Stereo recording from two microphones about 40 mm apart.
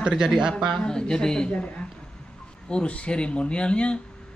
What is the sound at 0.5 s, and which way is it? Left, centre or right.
Speech, left.